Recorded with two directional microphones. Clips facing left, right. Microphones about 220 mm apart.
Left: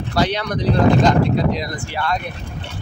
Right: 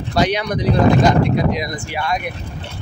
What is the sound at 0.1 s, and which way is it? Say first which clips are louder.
Speech: right 2 dB; 15° right (ahead or behind).